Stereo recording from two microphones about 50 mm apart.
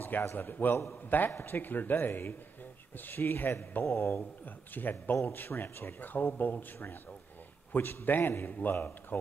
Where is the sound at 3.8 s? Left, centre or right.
Left.